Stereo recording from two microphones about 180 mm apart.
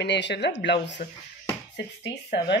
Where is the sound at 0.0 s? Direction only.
75° left (ahead or behind).